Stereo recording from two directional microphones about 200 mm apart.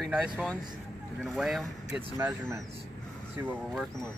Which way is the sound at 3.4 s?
10° right (ahead or behind).